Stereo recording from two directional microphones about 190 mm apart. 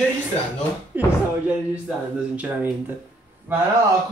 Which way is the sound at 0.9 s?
10° right (ahead or behind).